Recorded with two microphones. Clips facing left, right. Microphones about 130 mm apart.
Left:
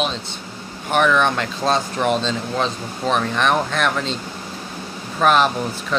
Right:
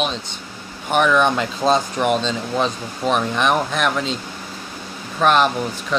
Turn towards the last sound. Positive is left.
turn(degrees=0)  # may be behind; listen again after turning